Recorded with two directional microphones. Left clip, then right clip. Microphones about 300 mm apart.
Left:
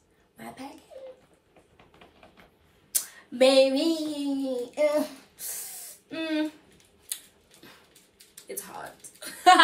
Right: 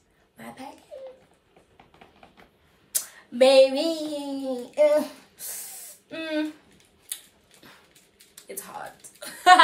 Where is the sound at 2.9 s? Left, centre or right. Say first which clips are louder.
Right 1 dB; centre.